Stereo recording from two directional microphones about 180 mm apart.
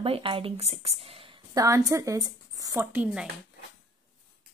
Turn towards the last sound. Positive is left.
turn(degrees=-5)  # may be behind; listen again after turning